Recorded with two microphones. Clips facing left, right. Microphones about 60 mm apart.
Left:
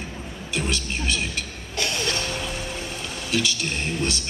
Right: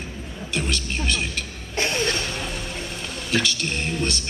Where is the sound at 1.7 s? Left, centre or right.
Right.